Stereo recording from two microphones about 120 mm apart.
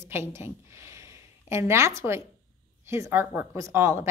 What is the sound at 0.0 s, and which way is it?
A woman's voice, 20° right (ahead or behind).